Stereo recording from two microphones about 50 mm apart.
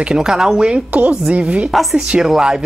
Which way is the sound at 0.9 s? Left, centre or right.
Right.